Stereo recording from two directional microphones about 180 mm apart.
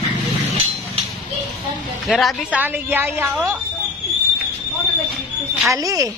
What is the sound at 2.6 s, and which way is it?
Speech, 10° right (ahead or behind).